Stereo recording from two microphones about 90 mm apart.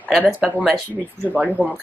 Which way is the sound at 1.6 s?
20° right (ahead or behind).